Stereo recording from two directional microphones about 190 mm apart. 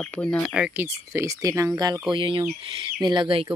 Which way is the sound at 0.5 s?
10° right (ahead or behind).